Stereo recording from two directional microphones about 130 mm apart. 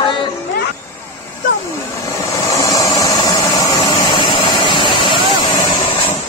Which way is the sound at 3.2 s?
30° left (ahead or behind).